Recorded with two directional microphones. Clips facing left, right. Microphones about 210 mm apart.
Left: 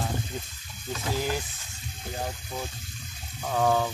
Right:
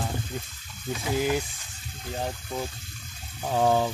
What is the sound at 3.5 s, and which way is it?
Speech, 25° right (ahead or behind).